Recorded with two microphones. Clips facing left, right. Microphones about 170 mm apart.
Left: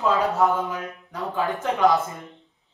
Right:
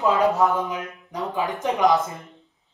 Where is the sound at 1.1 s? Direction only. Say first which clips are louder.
Even; 20° right (ahead or behind).